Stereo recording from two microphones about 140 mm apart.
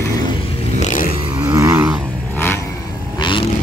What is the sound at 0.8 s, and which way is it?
Vehicle, 80° left.